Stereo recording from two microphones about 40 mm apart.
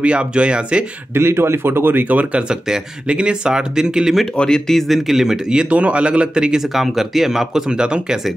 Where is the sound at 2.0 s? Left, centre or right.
Right.